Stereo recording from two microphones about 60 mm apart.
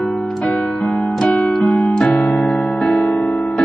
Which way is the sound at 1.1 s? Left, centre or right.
Centre.